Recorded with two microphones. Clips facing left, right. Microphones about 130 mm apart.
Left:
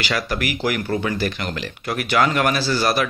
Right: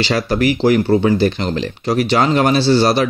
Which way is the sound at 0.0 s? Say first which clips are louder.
Right 8 dB; 35° right (ahead or behind).